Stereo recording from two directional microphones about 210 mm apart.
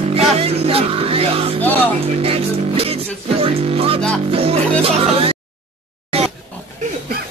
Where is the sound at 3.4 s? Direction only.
25° right (ahead or behind).